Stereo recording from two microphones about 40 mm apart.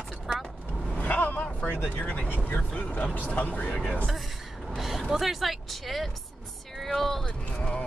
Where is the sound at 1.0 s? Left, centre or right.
Left.